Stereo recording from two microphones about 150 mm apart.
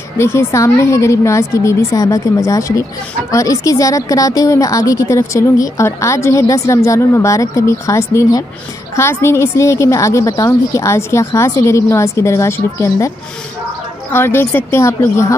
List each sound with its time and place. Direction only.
0.2 s a woman's voice: 15° left (ahead or behind)
14.1 s speech: 15° left (ahead or behind)